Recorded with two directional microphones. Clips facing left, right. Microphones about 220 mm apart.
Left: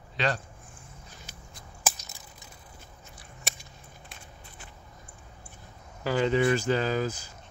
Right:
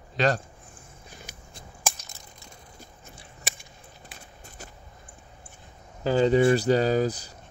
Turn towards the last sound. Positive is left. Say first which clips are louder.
# right 5 dB
turn(degrees=-35)  # may be behind; listen again after turning